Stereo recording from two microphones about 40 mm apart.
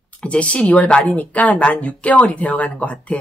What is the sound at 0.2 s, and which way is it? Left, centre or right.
Speech, left.